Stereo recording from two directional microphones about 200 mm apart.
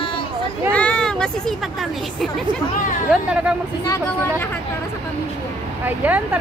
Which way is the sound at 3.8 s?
15° left (ahead or behind).